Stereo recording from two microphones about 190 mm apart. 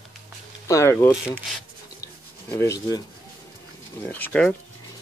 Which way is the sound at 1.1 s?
5° right (ahead or behind).